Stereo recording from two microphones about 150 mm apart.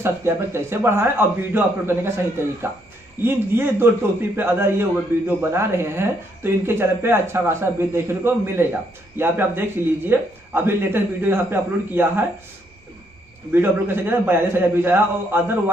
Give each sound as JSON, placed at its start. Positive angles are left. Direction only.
{"t": 0.0, "sound": "a man's voice", "side_deg": -15}
{"t": 3.2, "sound": "a man's voice", "side_deg": -15}
{"t": 13.5, "sound": "a man's voice", "side_deg": -15}